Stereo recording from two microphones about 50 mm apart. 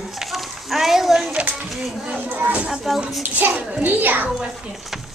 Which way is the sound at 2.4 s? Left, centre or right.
Right.